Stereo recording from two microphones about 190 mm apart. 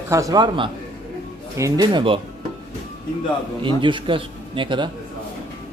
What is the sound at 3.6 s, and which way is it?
Speech, 25° right (ahead or behind).